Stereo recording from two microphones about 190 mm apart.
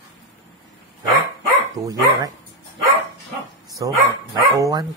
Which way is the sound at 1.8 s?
20° right (ahead or behind).